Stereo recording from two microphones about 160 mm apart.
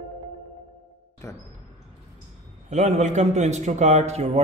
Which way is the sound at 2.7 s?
45° right (ahead or behind).